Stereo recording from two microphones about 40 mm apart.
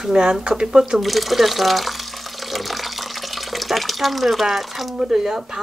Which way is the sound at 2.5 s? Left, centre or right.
Centre.